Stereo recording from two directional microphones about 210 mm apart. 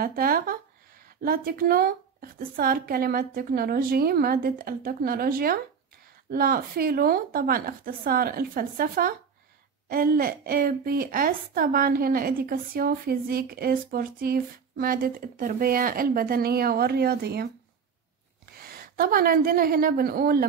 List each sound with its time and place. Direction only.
0.0 s a sound: 45° right (ahead or behind)
1.2 s a woman's voice: 45° right (ahead or behind)
18.7 s a woman's voice: 45° right (ahead or behind)